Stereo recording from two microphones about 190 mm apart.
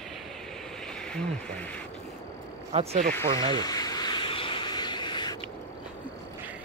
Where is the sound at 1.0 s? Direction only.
5° left (ahead or behind).